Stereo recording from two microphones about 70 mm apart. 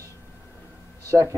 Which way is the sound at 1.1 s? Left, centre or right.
Right.